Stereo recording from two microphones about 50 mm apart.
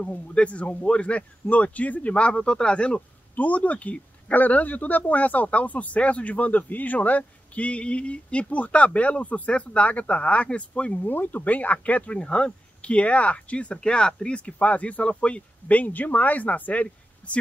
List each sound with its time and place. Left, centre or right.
0.0 s speech: left
3.3 s speech: left
11.1 s speech: left